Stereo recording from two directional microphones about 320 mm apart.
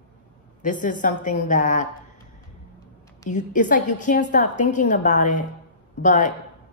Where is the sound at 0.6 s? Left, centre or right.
Left.